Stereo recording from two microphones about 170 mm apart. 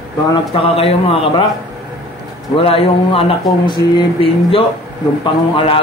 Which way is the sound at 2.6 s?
35° left (ahead or behind).